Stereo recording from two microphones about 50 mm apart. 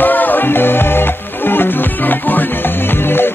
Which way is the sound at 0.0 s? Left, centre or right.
Left.